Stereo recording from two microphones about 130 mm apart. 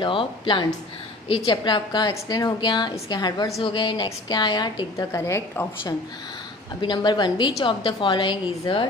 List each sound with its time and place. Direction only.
0.0 s a woman's voice: 40° left (ahead or behind); by 5.7 s 20° left (ahead or behind)
6.8 s a woman's voice: 35° left (ahead or behind)